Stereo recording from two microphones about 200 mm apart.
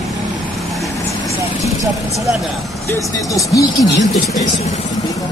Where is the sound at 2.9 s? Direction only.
15° left (ahead or behind).